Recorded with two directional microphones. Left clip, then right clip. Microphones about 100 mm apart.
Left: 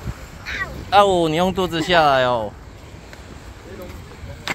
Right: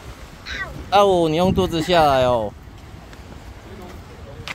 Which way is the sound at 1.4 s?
55° right (ahead or behind).